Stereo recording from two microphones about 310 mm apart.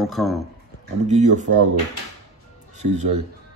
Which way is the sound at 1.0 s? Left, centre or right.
Right.